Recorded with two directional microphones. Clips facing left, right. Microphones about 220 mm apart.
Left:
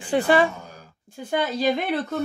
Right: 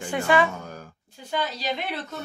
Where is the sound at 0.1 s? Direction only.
35° left (ahead or behind).